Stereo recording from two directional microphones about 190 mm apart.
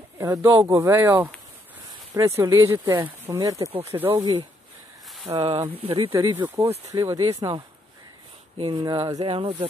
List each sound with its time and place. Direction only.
0.2 s speech: 15° right (ahead or behind)